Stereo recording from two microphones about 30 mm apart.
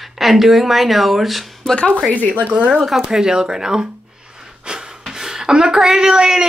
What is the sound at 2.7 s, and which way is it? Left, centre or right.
Speech, centre.